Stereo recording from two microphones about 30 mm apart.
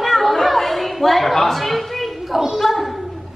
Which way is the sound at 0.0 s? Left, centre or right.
Centre.